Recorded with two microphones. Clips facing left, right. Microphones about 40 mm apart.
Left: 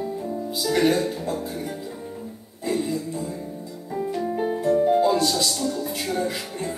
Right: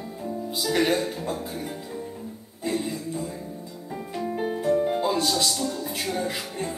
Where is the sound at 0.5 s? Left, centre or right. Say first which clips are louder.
Left 3 dB; centre.